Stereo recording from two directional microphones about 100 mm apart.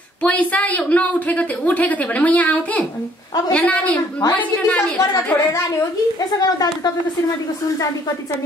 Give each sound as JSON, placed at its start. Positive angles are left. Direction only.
{"t": 0.2, "sound": "a woman's voice", "side_deg": 15}
{"t": 4.9, "sound": "a woman's voice", "side_deg": 30}